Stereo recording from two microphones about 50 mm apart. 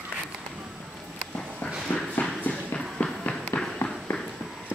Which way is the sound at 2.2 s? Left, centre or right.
Left.